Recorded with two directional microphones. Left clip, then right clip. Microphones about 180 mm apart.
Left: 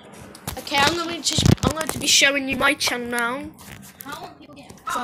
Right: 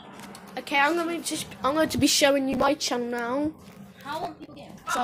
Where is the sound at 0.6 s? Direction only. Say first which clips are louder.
Left 3 dB; centre (ahead or behind).